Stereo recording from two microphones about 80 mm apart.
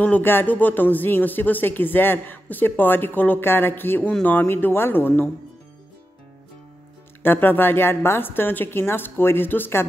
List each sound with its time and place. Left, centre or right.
0.0 s speech: left
7.2 s speech: left